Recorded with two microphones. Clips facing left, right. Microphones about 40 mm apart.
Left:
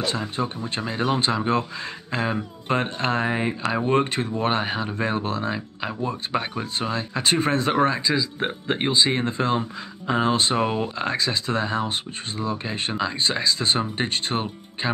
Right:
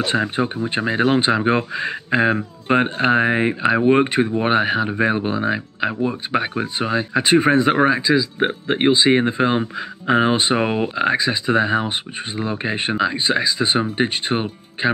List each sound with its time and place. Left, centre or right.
0.0 s speech: right